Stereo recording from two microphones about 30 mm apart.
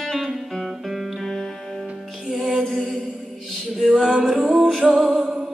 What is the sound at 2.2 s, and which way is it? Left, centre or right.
Music, centre.